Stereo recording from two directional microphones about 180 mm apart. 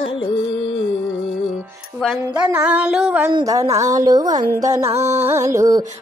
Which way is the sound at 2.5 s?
10° right (ahead or behind).